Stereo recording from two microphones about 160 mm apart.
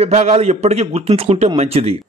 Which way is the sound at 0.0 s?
45° right (ahead or behind).